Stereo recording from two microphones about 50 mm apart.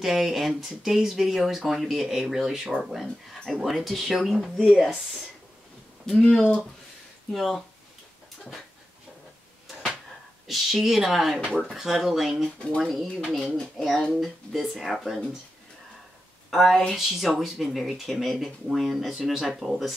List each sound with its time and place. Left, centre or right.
0.0 s speech: centre
6.0 s speech: centre
7.3 s speech: centre
10.4 s speech: centre
12.6 s speech: centre
14.1 s speech: centre
16.4 s speech: centre
19.3 s speech: centre
19.6 s speech: centre